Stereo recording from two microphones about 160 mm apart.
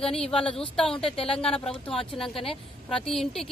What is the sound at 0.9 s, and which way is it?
Speech, 35° left (ahead or behind).